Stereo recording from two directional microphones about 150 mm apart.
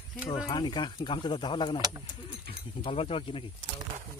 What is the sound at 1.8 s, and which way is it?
Speech, 25° right (ahead or behind).